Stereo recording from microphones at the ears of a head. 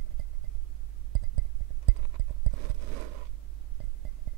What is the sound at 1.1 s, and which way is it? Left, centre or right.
Music, right.